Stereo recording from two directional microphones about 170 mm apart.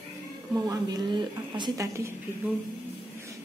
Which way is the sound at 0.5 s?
20° right (ahead or behind).